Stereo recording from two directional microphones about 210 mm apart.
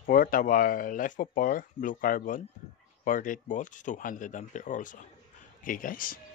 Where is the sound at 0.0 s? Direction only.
40° left (ahead or behind).